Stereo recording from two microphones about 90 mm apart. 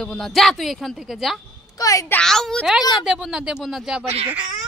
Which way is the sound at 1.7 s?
40° left (ahead or behind).